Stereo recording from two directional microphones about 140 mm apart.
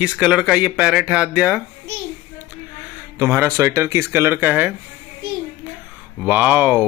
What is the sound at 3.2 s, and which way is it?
Speech, 15° right (ahead or behind).